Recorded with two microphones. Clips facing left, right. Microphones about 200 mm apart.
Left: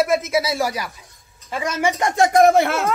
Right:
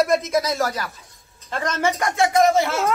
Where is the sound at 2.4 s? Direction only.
55° left (ahead or behind).